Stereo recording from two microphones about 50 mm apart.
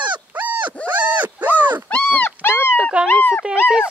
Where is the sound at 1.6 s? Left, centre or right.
Right.